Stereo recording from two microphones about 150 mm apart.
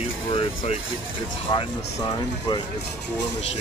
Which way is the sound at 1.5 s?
30° left (ahead or behind).